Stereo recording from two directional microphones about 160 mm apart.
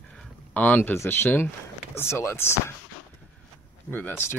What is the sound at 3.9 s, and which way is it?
Speech, 15° left (ahead or behind).